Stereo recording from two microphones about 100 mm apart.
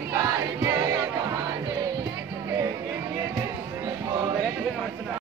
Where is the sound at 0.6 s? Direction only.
35° right (ahead or behind).